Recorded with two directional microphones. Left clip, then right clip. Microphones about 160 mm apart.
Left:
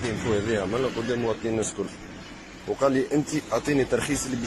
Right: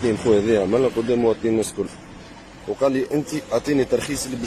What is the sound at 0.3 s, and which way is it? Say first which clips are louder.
Speech: right 8 dB; 35° right (ahead or behind).